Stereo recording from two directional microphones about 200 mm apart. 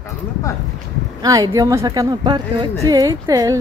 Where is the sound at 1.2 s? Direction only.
15° right (ahead or behind).